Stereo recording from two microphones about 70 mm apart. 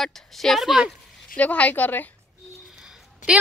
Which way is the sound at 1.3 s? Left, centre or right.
Centre.